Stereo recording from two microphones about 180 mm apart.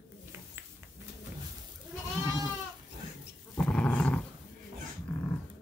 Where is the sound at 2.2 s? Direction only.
20° right (ahead or behind).